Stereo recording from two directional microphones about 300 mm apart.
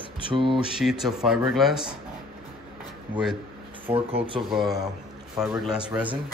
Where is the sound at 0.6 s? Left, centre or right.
Centre.